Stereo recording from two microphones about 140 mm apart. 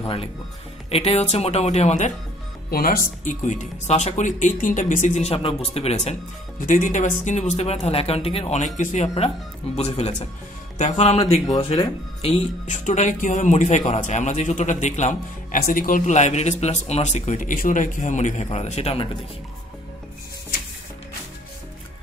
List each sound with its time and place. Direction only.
0.0 s speech: 45° left (ahead or behind)
2.7 s speech: 90° left
3.3 s speech: 60° left (ahead or behind)
6.6 s speech: 70° left (ahead or behind); by 11.3 s 50° left (ahead or behind)
11.4 s speech: 30° left (ahead or behind)
12.2 s speech: 55° left (ahead or behind)